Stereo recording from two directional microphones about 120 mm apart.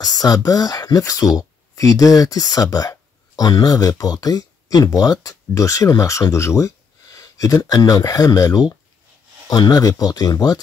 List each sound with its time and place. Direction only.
0.0 s speech: 30° left (ahead or behind)